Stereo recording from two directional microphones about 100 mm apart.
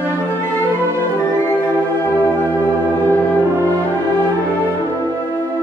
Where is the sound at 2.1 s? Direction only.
20° left (ahead or behind).